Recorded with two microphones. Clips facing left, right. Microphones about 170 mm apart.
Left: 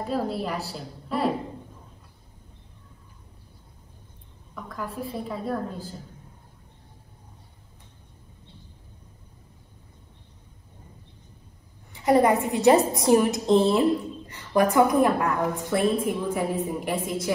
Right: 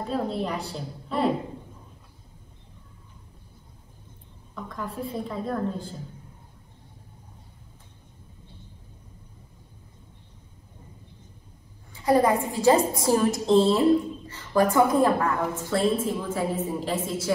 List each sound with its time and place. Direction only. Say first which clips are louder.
0.0 s a woman's voice: even; 5° left (ahead or behind)
4.6 s a woman's voice: even; centre (ahead or behind)
11.9 s a woman's voice: left 1 dB; 20° left (ahead or behind)